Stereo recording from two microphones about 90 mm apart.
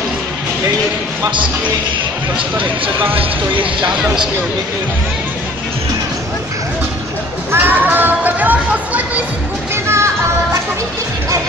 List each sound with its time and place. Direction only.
3.8 s speech: 10° right (ahead or behind)
7.5 s a sound: 20° right (ahead or behind)
9.8 s music: 30° right (ahead or behind)